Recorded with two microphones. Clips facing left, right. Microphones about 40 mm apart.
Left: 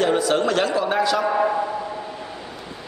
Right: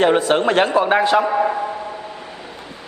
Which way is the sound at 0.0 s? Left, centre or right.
Right.